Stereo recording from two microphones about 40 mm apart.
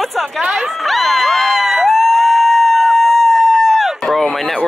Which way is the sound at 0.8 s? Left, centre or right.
Centre.